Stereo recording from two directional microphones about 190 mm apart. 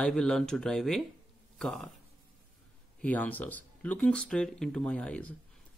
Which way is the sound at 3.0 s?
10° left (ahead or behind).